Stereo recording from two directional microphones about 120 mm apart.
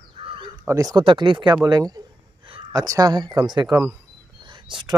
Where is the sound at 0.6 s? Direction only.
25° right (ahead or behind).